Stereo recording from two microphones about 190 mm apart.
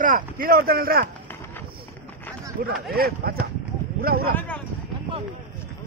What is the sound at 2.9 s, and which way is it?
Speech, 55° right (ahead or behind).